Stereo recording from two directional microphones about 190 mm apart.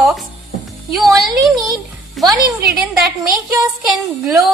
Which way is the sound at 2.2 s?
Centre (ahead or behind).